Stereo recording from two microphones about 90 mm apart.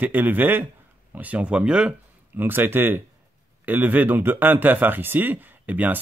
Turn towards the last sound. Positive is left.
turn(degrees=-15)  # may be behind; listen again after turning